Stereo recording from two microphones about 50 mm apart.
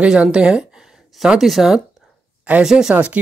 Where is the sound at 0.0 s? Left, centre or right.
Centre.